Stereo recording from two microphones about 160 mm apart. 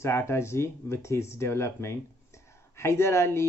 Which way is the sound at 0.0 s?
15° left (ahead or behind).